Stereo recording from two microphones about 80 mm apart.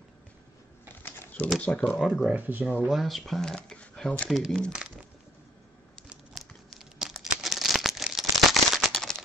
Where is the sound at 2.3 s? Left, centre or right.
Right.